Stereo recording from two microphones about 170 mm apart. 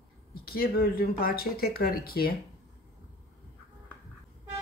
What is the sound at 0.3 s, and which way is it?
Speech, 65° left (ahead or behind).